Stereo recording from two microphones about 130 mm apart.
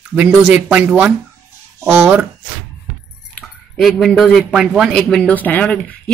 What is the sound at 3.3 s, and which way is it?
Speech, centre (ahead or behind).